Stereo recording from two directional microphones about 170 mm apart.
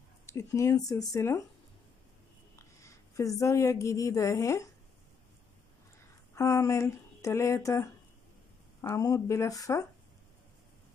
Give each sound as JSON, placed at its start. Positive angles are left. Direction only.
{"t": 0.3, "sound": "speech", "side_deg": 20}
{"t": 2.8, "sound": "a woman's voice", "side_deg": 20}
{"t": 6.3, "sound": "speech", "side_deg": 15}